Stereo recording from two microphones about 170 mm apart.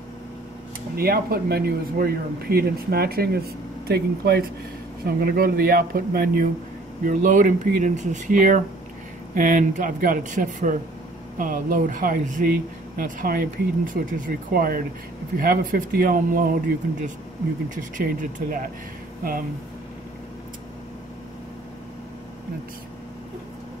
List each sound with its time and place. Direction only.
0.9 s speech: 65° right (ahead or behind)
7.1 s speech: 50° right (ahead or behind)
17.6 s speech: 55° right (ahead or behind)